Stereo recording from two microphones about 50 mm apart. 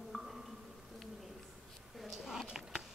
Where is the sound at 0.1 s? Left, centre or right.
Centre.